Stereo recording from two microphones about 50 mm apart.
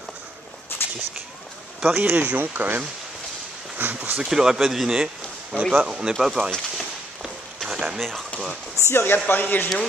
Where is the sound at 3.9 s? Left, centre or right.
Right.